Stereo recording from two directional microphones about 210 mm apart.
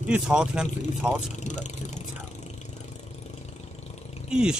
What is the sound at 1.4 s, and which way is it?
Speech, 35° left (ahead or behind).